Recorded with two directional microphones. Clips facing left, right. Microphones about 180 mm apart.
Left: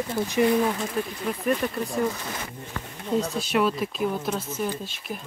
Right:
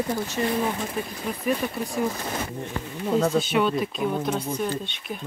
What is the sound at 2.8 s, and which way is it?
Speech, 20° right (ahead or behind).